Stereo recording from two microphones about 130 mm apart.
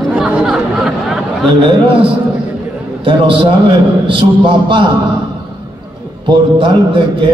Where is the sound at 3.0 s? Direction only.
40° right (ahead or behind).